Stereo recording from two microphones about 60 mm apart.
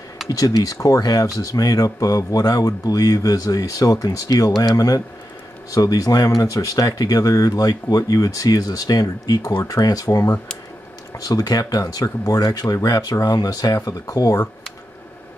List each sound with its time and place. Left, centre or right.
0.3 s speech: left
11.1 s speech: left